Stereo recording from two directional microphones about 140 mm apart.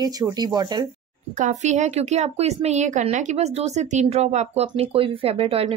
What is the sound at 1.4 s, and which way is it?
A woman's voice, 60° right (ahead or behind).